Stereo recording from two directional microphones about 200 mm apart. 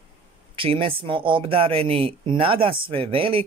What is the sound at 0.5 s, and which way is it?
Speech, 25° right (ahead or behind).